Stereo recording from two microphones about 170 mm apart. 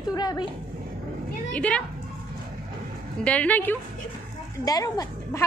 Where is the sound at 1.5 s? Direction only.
5° left (ahead or behind).